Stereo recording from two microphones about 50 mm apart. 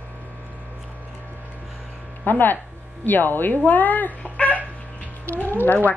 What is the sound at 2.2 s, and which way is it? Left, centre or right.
Speech, left.